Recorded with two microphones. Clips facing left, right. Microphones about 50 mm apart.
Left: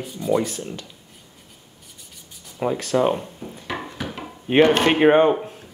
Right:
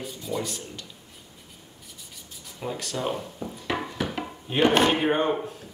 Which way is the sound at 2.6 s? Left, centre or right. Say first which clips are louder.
Left 9 dB; left.